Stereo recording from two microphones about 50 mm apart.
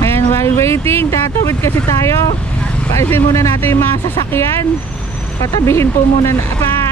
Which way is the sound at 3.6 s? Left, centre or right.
Left.